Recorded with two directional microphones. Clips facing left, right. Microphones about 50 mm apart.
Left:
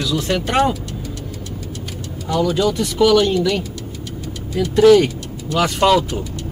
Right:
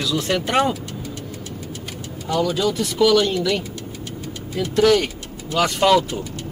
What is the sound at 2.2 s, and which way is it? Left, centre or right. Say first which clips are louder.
Speech: left 3 dB; centre.